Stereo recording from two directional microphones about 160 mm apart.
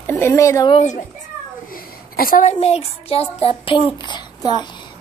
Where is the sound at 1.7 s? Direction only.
65° left (ahead or behind).